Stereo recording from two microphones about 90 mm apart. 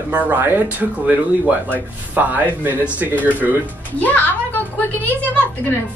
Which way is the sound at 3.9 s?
20° left (ahead or behind).